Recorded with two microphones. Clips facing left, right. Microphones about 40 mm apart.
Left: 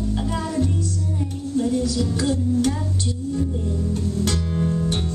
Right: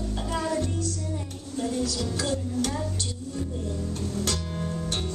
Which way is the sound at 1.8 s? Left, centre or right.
Centre.